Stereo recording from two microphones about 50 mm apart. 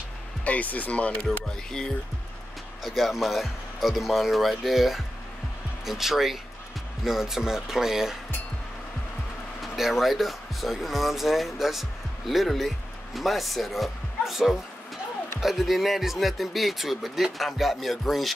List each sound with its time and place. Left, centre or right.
0.5 s speech: left
1.2 s speech: centre
2.8 s speech: centre
9.6 s speech: centre